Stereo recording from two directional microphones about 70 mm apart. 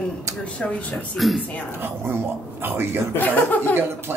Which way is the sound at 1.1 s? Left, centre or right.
Centre.